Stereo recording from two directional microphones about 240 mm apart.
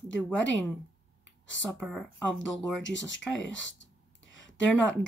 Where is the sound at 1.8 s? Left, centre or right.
Centre.